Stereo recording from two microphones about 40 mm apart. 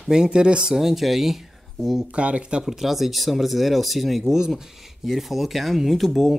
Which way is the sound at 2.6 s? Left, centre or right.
Centre.